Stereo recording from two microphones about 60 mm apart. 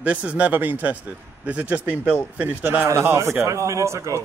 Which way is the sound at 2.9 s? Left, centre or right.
Right.